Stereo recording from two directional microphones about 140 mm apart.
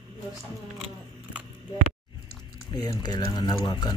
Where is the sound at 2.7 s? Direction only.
25° left (ahead or behind).